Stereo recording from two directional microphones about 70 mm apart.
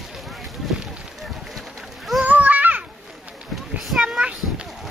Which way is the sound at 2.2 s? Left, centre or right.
Right.